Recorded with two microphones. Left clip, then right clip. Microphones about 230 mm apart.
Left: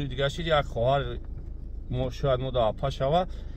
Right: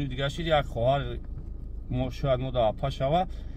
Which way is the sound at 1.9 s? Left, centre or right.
Centre.